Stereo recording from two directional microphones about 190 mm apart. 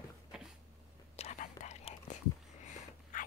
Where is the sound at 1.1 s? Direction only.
35° left (ahead or behind).